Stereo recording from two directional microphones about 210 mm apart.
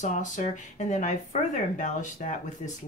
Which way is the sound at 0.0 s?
35° left (ahead or behind).